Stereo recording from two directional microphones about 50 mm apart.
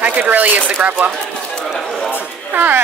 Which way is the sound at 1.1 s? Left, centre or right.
Centre.